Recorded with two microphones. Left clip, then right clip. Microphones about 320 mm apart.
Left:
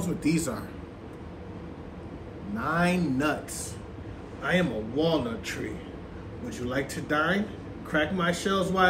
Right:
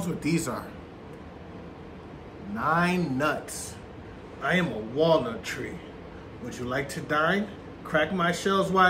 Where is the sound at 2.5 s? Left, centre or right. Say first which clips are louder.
Right 2 dB; centre.